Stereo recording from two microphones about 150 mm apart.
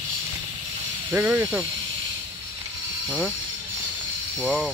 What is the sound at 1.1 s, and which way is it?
Speech, 15° right (ahead or behind).